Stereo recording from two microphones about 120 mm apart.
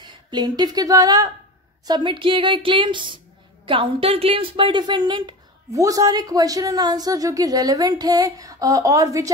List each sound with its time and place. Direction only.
0.0 s speech: 40° right (ahead or behind)
1.9 s a woman's voice: 45° right (ahead or behind)